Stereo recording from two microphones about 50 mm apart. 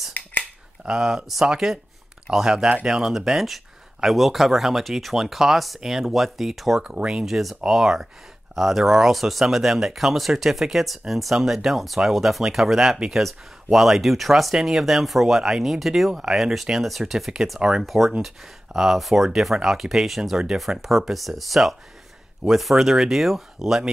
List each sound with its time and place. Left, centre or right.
0.2 s a sound: left
0.8 s speech: centre
6.8 s speech: centre